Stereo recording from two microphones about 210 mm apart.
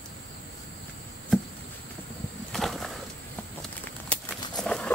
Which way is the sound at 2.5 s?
Centre (ahead or behind).